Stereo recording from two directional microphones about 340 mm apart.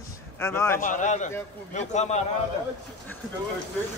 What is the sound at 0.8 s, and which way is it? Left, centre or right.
Speech, left.